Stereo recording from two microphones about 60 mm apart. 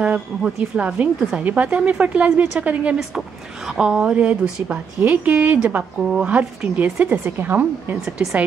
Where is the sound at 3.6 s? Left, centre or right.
Centre; by 5.8 s right.